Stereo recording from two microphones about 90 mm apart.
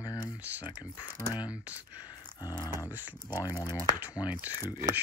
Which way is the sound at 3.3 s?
45° left (ahead or behind).